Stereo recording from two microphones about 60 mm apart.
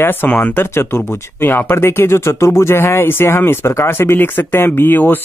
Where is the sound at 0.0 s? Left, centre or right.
Left.